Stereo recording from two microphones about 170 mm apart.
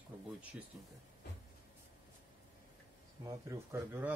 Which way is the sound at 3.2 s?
15° right (ahead or behind).